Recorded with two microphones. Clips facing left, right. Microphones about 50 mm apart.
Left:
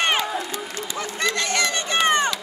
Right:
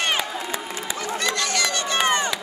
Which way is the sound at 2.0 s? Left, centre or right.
Left.